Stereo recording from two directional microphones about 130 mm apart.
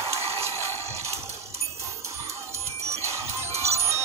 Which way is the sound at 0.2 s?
50° right (ahead or behind).